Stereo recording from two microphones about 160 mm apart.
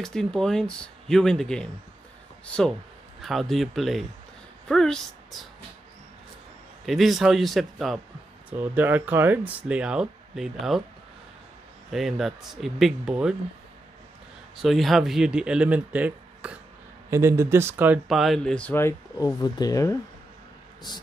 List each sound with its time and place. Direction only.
0.0 s speech: 5° left (ahead or behind)
6.9 s speech: centre (ahead or behind)
8.5 s speech: 10° right (ahead or behind)
11.9 s speech: centre (ahead or behind)
14.6 s speech: centre (ahead or behind)
18.0 s speech: centre (ahead or behind); by 21.0 s 25° left (ahead or behind)